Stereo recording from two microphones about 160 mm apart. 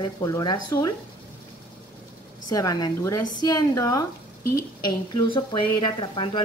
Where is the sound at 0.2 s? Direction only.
25° left (ahead or behind).